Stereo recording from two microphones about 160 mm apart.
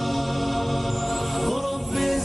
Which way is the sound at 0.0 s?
Centre (ahead or behind).